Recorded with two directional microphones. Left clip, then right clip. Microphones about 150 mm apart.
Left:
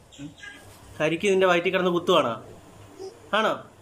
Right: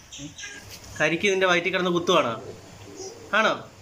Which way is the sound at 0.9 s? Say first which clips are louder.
Even; 15° left (ahead or behind).